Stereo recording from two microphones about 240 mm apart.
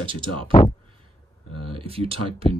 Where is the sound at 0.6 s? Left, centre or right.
Left.